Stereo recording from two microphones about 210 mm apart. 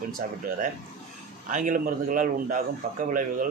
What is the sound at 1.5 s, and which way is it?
Speech, 40° right (ahead or behind).